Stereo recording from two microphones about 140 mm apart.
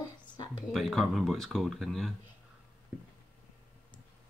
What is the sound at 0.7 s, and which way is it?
Speech, centre (ahead or behind).